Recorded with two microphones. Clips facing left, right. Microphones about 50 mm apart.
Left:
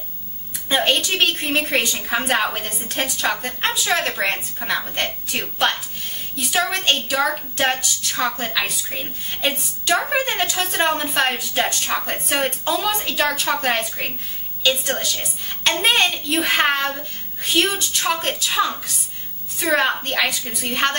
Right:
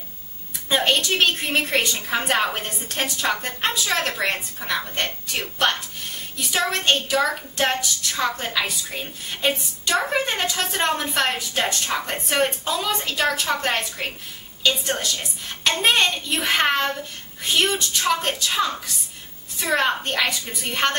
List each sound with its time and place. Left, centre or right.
0.7 s a woman's voice: centre
18.6 s a woman's voice: left
19.6 s a woman's voice: centre